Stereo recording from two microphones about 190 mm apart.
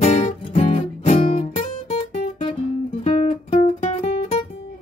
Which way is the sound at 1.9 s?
30° left (ahead or behind).